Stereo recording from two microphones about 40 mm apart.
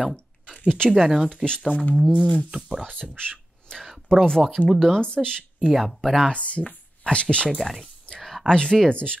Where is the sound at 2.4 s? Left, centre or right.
Centre.